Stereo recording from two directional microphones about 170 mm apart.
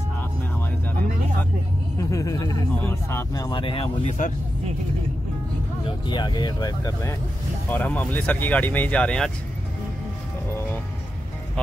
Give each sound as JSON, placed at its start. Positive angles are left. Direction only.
{"t": 2.0, "sound": "speech", "side_deg": 20}
{"t": 4.2, "sound": "speech", "side_deg": 50}
{"t": 5.9, "sound": "speech", "side_deg": 25}